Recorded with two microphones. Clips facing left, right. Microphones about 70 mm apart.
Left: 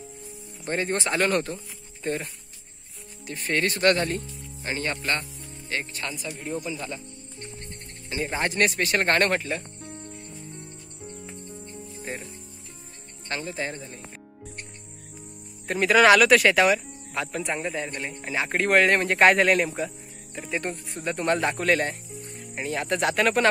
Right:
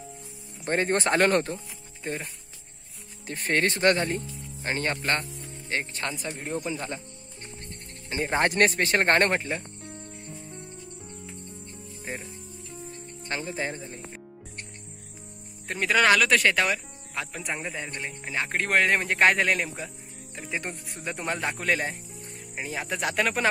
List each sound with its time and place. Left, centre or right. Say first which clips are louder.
0.7 s speech: right 2 dB; right
2.0 s speech: left 4 dB; centre
3.3 s speech: right 1 dB; right
3.6 s speech: left 2 dB; right
4.6 s speech: right 1 dB; right
8.1 s speech: right 3 dB; right
12.1 s speech: left 1 dB; centre
13.3 s speech: even; right
15.6 s speech: left 5 dB; centre